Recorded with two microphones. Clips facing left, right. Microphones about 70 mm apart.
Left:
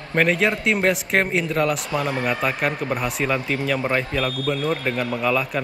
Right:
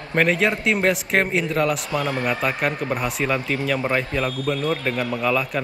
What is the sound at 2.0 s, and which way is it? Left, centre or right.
Speech, centre.